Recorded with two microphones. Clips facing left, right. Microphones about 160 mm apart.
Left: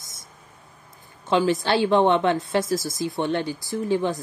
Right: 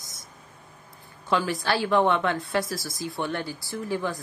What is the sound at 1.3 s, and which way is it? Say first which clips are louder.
A woman's voice: left 5 dB; 20° left (ahead or behind).